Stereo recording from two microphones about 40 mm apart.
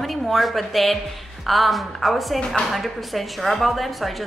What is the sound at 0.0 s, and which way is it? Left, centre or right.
A woman's voice, centre.